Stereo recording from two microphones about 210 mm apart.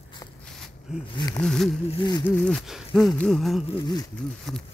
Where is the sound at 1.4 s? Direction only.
Centre (ahead or behind).